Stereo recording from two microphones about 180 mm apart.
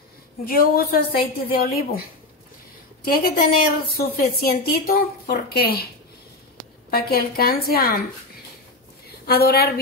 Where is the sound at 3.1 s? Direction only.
55° left (ahead or behind).